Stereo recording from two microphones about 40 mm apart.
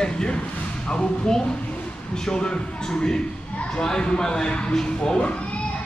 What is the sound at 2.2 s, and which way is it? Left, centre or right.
Speech, centre.